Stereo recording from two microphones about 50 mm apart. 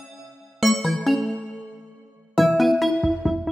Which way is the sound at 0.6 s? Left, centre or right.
Centre.